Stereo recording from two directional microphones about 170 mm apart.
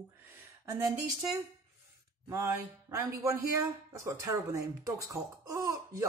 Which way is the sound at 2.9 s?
15° right (ahead or behind).